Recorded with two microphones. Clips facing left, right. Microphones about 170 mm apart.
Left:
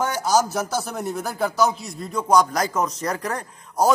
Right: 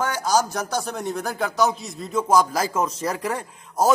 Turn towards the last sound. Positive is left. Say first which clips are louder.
# left 1 dB
turn(degrees=-5)  # may be behind; listen again after turning